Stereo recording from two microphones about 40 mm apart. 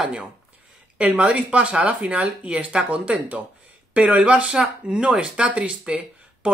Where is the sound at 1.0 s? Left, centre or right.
Right.